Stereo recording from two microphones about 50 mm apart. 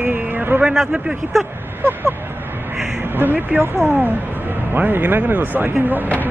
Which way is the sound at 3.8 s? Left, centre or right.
Right.